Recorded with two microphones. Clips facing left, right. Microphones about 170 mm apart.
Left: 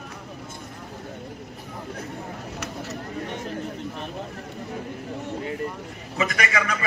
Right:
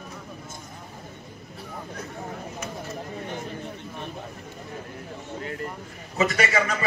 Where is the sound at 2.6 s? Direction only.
75° left (ahead or behind).